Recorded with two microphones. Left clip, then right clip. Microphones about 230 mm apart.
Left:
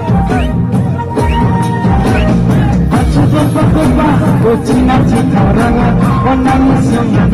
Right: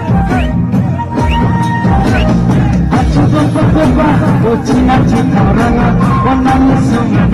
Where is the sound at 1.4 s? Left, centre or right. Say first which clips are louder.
Even; left.